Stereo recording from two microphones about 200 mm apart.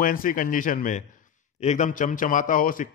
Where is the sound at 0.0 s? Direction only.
45° left (ahead or behind).